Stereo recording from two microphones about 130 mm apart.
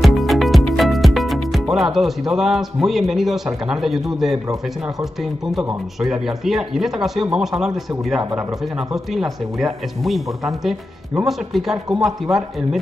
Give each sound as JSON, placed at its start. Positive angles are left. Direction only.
{"t": 0.0, "sound": "music", "side_deg": 0}
{"t": 5.5, "sound": "speech", "side_deg": -5}